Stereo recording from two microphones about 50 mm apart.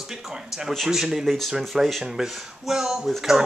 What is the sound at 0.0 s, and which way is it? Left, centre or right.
Speech, centre.